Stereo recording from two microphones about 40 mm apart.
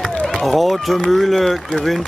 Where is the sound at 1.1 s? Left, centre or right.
Centre.